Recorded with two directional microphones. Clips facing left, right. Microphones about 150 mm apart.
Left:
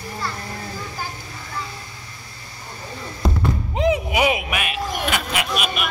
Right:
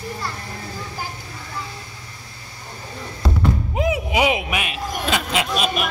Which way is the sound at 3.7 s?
10° right (ahead or behind).